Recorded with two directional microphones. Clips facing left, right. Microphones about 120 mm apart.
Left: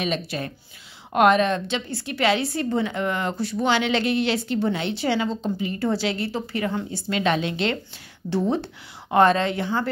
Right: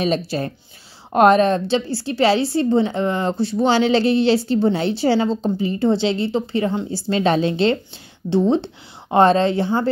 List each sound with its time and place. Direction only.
0.0 s a woman's voice: 35° right (ahead or behind)